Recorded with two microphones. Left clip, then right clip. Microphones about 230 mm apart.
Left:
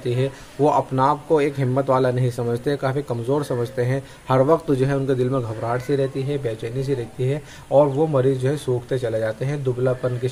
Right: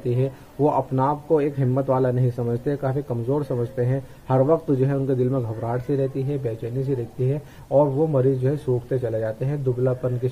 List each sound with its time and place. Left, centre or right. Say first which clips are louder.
0.2 s a man's voice: left 3 dB; centre